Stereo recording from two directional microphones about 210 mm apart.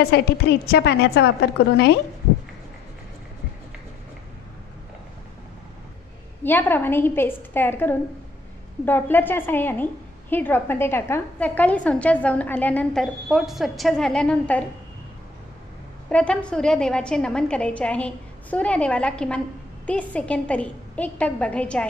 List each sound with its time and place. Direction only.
0.0 s a woman's voice: 50° left (ahead or behind)
6.4 s a woman's voice: 10° left (ahead or behind)
16.1 s a woman's voice: 5° left (ahead or behind)